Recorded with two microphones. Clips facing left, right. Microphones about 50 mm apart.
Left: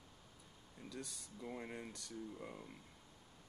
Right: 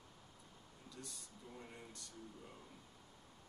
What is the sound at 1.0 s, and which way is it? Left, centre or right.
Speech, left.